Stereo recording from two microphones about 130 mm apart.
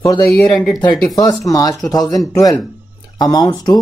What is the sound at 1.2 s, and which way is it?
Speech, 25° left (ahead or behind).